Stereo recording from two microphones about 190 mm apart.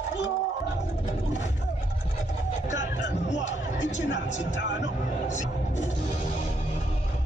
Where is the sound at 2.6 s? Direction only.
70° left (ahead or behind).